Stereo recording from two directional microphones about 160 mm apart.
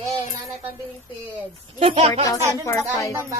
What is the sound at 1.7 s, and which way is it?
Speech, 40° right (ahead or behind).